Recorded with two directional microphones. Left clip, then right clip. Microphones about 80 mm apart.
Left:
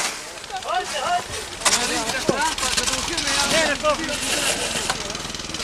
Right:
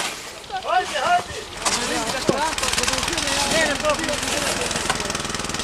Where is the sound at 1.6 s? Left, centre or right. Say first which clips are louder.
Left 3 dB; left.